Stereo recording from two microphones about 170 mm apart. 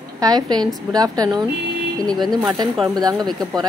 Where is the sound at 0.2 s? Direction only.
25° right (ahead or behind).